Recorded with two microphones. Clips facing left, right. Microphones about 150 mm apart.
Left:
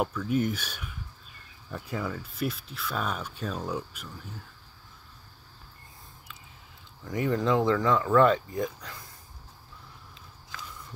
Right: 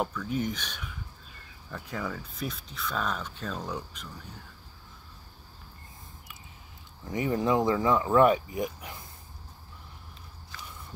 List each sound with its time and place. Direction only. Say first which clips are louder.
0.0 s speech: left 3 dB; 10° left (ahead or behind)
7.1 s speech: left 1 dB; 20° right (ahead or behind)